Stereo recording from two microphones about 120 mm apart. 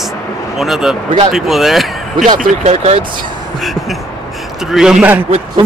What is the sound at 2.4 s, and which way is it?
Speech, 75° right (ahead or behind).